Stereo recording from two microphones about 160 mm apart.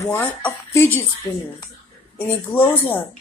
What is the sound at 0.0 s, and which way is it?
Speech, 10° left (ahead or behind).